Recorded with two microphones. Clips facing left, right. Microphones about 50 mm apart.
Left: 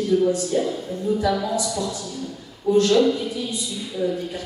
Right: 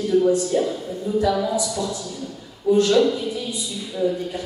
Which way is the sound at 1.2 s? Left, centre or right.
Centre.